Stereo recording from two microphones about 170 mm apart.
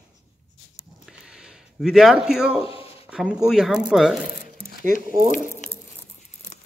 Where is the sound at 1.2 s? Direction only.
5° right (ahead or behind).